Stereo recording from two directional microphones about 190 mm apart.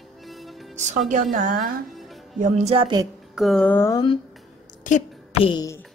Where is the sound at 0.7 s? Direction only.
40° right (ahead or behind).